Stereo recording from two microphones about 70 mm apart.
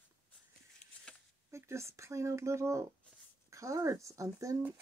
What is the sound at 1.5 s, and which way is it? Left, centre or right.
Speech, right.